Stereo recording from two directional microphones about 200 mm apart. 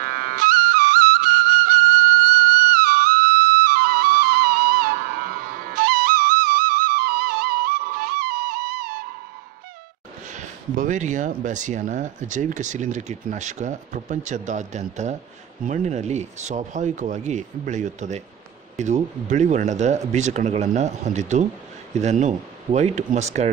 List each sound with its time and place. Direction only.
0.0 s flute: 45° right (ahead or behind)
2.2 s music: 50° right (ahead or behind)
10.3 s speech: 40° right (ahead or behind)